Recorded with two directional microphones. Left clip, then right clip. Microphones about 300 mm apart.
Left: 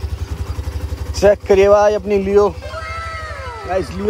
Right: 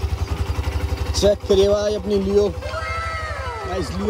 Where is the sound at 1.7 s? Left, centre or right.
Centre.